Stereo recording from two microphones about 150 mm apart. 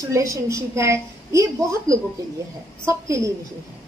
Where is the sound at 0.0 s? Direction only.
20° right (ahead or behind).